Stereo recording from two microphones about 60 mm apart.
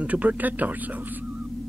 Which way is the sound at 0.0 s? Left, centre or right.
Right.